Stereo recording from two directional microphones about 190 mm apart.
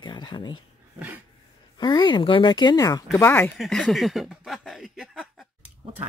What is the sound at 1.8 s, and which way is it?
Speech, 25° left (ahead or behind).